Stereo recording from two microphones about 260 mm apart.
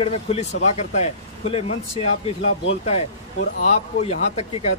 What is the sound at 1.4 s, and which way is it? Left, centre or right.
Speech, left.